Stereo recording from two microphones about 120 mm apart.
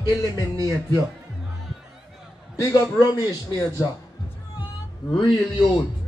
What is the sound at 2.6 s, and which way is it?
Speech, 30° left (ahead or behind).